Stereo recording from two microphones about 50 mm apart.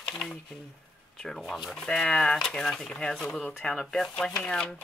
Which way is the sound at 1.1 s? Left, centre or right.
Centre.